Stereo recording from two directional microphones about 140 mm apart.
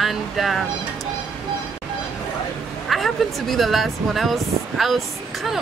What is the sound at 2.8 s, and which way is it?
Speech, centre (ahead or behind).